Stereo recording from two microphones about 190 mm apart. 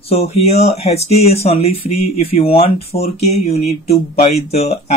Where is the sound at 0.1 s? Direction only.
35° left (ahead or behind).